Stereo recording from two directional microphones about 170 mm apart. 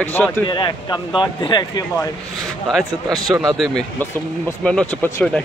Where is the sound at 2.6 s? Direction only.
Centre (ahead or behind).